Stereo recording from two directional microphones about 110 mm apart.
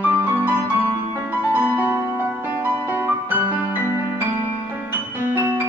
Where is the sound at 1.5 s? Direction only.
15° right (ahead or behind).